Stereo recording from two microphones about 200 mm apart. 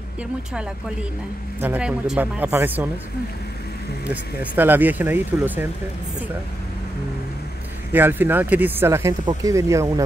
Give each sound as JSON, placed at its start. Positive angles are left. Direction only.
{"t": 1.6, "sound": "speech", "side_deg": -5}
{"t": 4.1, "sound": "speech", "side_deg": -10}
{"t": 7.9, "sound": "speech", "side_deg": -10}